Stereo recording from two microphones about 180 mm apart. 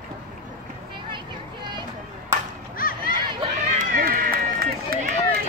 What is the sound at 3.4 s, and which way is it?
Run, 45° right (ahead or behind).